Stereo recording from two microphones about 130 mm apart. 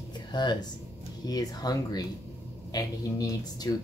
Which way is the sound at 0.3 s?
35° left (ahead or behind).